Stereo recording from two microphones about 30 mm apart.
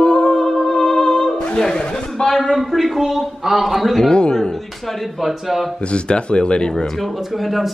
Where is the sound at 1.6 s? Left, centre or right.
Left.